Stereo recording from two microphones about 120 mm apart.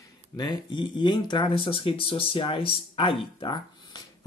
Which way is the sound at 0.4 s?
40° left (ahead or behind).